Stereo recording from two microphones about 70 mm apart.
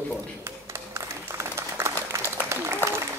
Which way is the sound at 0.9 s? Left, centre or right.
Right.